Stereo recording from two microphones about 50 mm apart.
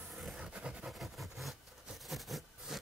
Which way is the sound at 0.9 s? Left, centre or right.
Centre.